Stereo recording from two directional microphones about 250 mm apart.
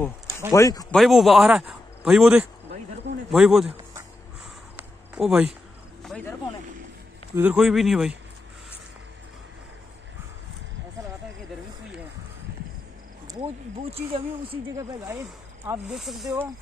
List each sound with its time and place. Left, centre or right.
0.5 s speech: centre
0.9 s a man's voice: centre
4.7 s a sound: centre
7.3 s a man's voice: centre
13.3 s speech: right
15.9 s a man's voice: centre